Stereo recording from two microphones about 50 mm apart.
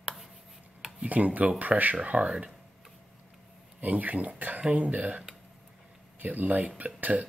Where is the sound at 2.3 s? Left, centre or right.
Centre.